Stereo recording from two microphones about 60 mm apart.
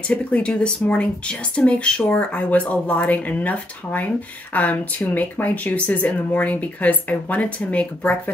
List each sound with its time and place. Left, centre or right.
0.1 s speech: centre